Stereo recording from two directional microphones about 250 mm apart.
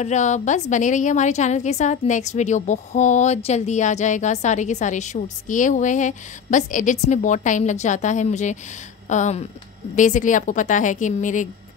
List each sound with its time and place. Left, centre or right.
0.0 s a woman's voice: left